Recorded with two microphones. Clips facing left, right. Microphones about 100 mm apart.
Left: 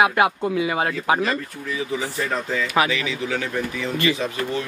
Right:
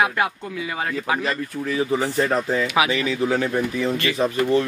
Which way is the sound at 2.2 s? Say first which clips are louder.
Right 4 dB; 35° right (ahead or behind).